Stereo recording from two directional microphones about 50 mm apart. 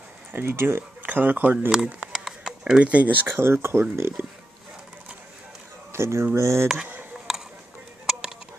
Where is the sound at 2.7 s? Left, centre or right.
Right.